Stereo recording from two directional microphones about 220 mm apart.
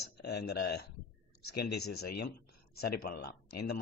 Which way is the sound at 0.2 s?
50° left (ahead or behind).